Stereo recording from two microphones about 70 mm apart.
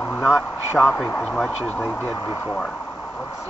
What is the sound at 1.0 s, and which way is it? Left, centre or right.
Speech, left.